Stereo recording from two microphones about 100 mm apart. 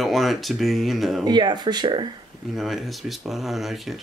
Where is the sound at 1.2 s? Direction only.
45° right (ahead or behind).